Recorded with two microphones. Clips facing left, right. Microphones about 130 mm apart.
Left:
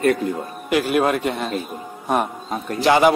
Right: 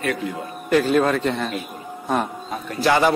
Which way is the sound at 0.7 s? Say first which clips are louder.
Right 1 dB; 10° left (ahead or behind).